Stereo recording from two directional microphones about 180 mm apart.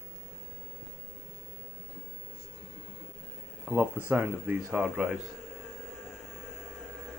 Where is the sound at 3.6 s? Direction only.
10° right (ahead or behind).